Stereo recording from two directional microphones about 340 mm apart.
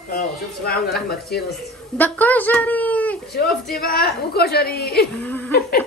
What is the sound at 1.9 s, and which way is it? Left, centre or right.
Speech, centre.